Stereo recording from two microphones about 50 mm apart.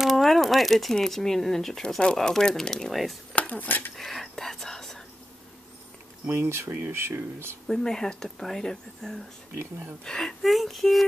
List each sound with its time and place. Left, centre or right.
0.0 s crumpling: centre
0.9 s speech: centre
2.9 s speech: centre
3.3 s speech: left
3.9 s whispering: centre
6.2 s speech: right
6.7 s speech: right
7.6 s speech: centre
10.4 s speech: centre